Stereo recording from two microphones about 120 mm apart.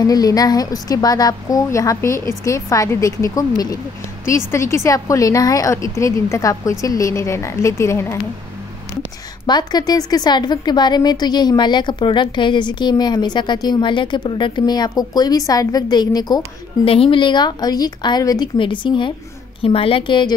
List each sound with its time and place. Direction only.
0.0 s a woman's voice: 30° left (ahead or behind)
9.5 s a woman's voice: 35° left (ahead or behind)
16.8 s a woman's voice: 50° left (ahead or behind)